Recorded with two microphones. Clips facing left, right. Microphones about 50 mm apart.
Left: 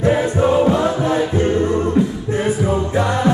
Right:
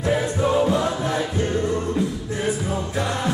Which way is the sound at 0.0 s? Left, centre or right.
Left.